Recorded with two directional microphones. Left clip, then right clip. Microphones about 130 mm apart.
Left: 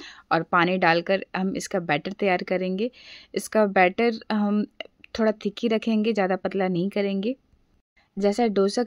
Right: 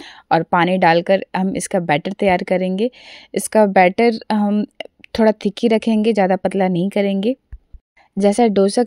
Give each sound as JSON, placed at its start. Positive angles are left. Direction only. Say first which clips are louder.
{"t": 0.0, "sound": "a woman's voice", "louder": "right 7 dB", "side_deg": -40}